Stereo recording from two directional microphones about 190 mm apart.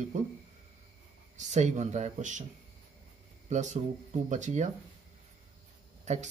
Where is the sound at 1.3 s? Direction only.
40° right (ahead or behind).